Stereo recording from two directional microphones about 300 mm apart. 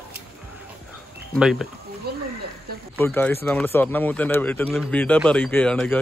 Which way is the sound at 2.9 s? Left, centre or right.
Centre.